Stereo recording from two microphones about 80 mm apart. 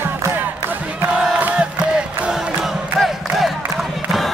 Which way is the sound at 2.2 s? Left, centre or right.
Centre.